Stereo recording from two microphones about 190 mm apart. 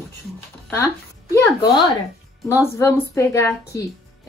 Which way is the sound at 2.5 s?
15° left (ahead or behind).